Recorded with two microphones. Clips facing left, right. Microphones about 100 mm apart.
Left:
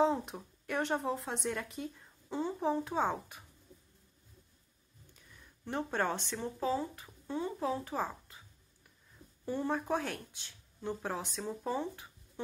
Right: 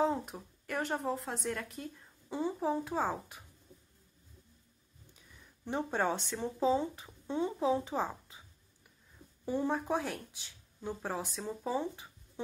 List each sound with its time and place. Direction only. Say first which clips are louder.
0.0 s speech: left 2 dB; 5° right (ahead or behind)
2.3 s speech: even; 10° right (ahead or behind)
5.7 s speech: right 1 dB; 15° right (ahead or behind)
9.5 s speech: right 1 dB; 15° right (ahead or behind)